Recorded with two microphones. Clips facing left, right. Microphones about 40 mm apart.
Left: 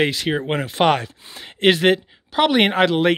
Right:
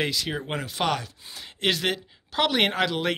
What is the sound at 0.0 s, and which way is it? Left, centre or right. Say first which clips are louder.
Speech: left 8 dB; left.